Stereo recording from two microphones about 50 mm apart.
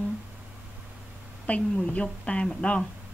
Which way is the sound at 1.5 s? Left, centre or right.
Left.